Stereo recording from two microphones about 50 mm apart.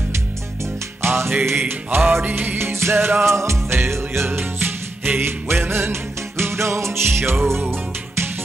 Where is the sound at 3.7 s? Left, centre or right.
Right.